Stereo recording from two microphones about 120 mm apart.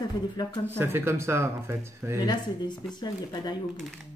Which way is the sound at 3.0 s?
35° left (ahead or behind).